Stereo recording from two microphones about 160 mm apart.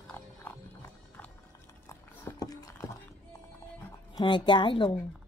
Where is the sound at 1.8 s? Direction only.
15° left (ahead or behind).